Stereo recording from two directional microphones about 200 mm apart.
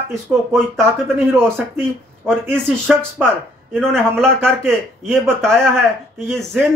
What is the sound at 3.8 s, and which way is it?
Speech, 5° left (ahead or behind).